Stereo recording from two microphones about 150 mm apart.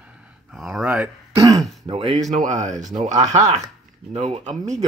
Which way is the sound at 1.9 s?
35° right (ahead or behind).